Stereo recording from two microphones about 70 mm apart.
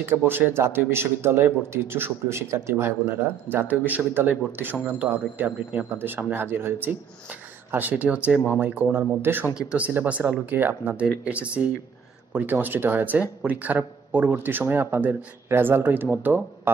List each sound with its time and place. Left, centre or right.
0.1 s speech: right
9.6 s speech: centre
11.0 s speech: centre